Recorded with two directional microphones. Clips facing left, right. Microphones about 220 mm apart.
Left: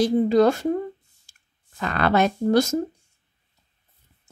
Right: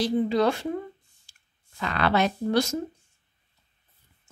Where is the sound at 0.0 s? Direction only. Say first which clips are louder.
Left 5 dB; 45° left (ahead or behind).